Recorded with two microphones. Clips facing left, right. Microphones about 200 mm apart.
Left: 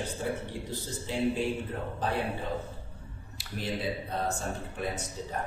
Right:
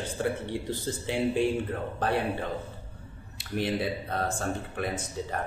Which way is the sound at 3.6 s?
65° right (ahead or behind).